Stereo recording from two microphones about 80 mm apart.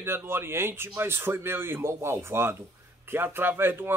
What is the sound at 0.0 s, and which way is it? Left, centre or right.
A man's voice, right.